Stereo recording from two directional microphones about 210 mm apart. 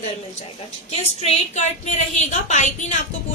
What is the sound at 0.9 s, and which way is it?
A woman's voice, 30° left (ahead or behind).